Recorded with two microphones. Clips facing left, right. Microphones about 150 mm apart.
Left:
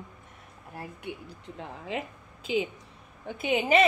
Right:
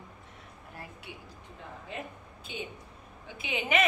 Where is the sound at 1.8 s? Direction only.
90° left.